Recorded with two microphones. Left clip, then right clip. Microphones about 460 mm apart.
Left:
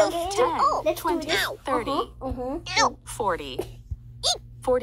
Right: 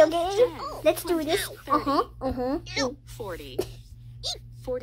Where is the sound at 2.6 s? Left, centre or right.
Centre.